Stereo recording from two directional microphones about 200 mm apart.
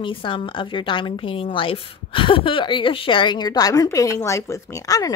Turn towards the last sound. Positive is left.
turn(degrees=15)  # may be behind; listen again after turning